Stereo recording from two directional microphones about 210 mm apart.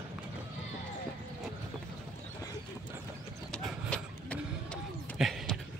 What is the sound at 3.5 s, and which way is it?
Printer, 5° left (ahead or behind).